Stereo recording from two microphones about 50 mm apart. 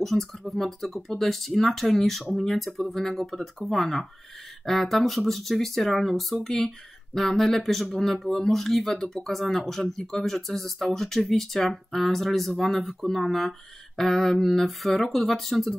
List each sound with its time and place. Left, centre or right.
0.0 s speech: centre